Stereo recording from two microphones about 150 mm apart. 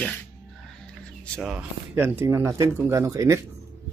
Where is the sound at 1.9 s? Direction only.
15° right (ahead or behind).